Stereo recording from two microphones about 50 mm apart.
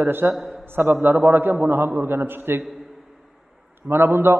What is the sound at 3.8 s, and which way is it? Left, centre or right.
Speech, right.